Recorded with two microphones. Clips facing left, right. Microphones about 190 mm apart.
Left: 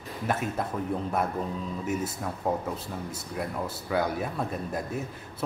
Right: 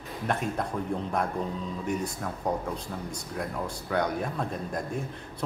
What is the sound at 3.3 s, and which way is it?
A man's voice, 5° left (ahead or behind).